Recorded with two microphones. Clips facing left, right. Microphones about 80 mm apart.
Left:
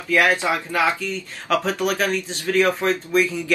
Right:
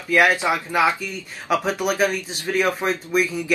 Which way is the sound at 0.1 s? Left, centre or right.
Right.